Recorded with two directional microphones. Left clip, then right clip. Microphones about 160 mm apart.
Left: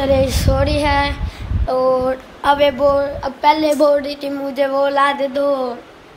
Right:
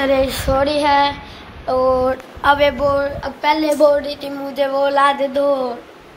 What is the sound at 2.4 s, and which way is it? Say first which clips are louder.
A woman's voice: left 1 dB; 30° left (ahead or behind).